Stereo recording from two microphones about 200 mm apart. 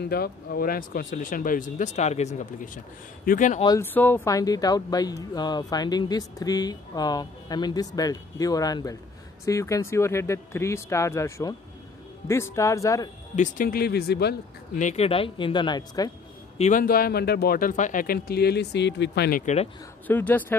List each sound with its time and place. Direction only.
0.0 s speech: 50° left (ahead or behind)
3.6 s speech: 15° left (ahead or behind)
13.4 s speech: 45° left (ahead or behind)
14.8 s speech: 35° left (ahead or behind)
16.5 s speech: 40° left (ahead or behind)
19.4 s speech: 35° left (ahead or behind)
20.1 s speech: 10° left (ahead or behind)